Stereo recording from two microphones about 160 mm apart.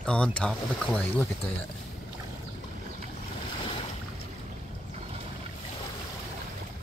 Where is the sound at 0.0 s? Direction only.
5° left (ahead or behind).